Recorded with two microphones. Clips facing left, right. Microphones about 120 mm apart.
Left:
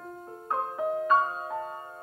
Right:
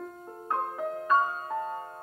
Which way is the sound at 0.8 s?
10° left (ahead or behind).